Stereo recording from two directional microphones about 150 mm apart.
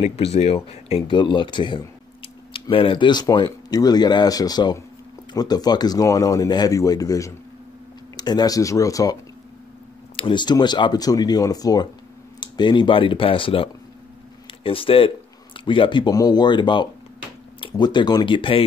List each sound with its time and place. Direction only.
0.0 s speech: 40° left (ahead or behind)